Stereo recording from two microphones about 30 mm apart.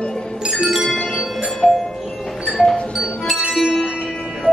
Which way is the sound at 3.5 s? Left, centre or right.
Centre.